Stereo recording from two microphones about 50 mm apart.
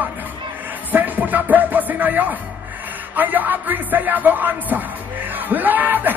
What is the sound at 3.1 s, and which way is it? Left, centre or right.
Speech, right.